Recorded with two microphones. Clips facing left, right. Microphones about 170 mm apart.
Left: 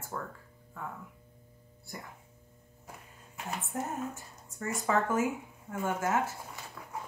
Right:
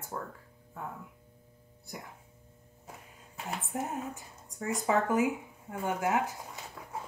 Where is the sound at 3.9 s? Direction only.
15° right (ahead or behind).